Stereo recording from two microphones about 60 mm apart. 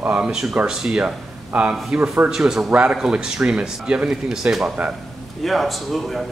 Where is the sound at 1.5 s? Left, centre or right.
Right.